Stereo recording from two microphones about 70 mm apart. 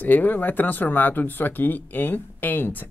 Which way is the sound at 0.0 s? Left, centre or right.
Left.